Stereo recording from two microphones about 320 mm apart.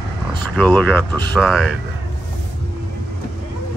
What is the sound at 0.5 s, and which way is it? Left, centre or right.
Speech, centre.